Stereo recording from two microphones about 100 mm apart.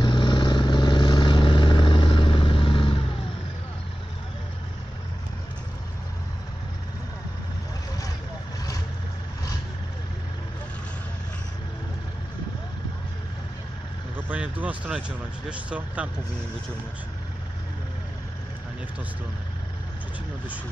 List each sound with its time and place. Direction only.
0.0 s vehicle: 50° left (ahead or behind)
14.1 s vehicle: 15° right (ahead or behind)